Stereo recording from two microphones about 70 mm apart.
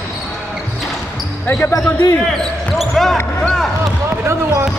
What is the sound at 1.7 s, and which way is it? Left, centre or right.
Speech, left.